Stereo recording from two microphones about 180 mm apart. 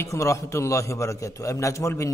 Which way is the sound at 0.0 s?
15° left (ahead or behind).